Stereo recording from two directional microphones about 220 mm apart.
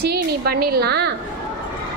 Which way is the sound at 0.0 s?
45° right (ahead or behind).